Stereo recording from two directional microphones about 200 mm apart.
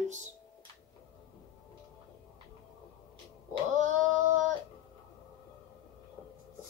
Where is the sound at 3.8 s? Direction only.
40° right (ahead or behind).